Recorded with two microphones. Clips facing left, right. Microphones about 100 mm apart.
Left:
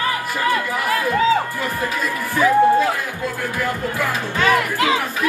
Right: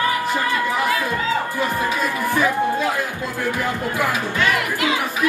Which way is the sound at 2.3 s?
20° right (ahead or behind).